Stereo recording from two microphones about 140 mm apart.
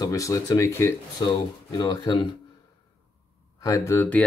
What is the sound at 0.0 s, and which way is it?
Speech, 25° left (ahead or behind).